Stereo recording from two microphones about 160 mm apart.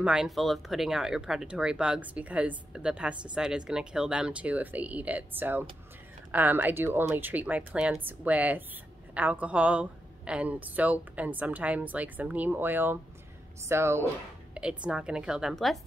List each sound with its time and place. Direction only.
0.0 s speech: 5° right (ahead or behind)